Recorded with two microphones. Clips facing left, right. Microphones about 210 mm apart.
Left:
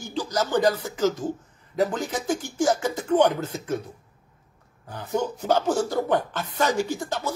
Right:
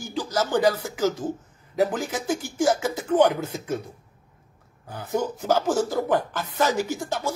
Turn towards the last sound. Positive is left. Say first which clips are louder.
# even
turn(degrees=-10)  # may be behind; listen again after turning